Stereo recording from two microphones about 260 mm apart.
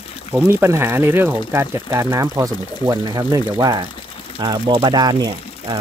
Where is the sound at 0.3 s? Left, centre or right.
Centre.